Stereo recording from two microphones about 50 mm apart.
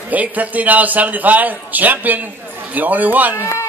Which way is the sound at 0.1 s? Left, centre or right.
Right.